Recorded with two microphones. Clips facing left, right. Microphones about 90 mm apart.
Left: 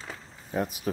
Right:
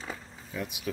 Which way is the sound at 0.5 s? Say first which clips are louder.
Left 6 dB; 40° left (ahead or behind).